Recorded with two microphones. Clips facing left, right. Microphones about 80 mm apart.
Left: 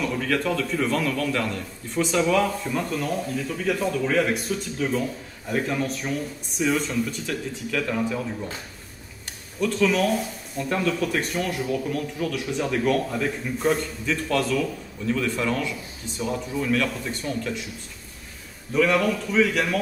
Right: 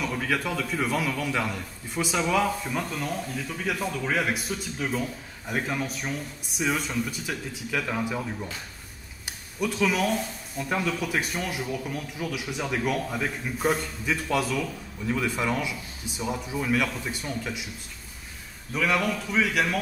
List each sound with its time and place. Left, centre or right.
0.0 s a man's voice: centre
9.6 s speech: centre
18.7 s a man's voice: centre